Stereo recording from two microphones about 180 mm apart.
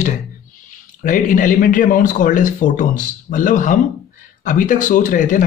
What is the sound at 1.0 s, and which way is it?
Speech, 45° left (ahead or behind).